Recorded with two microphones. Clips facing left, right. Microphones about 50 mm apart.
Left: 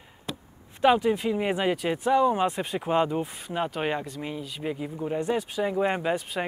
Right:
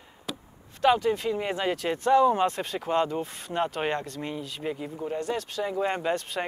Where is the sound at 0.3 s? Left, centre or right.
Centre.